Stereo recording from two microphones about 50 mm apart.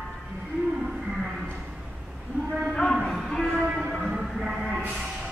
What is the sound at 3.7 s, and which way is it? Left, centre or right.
Music, centre.